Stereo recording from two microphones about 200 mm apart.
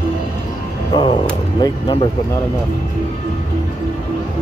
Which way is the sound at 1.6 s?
25° left (ahead or behind).